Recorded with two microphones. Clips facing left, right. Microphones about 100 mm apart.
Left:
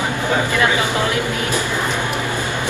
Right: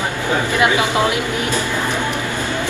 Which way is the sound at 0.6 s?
15° right (ahead or behind).